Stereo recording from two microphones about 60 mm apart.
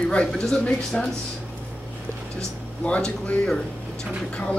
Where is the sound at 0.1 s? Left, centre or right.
Centre.